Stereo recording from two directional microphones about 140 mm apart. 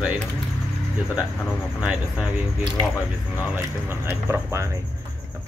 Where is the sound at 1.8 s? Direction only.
10° right (ahead or behind).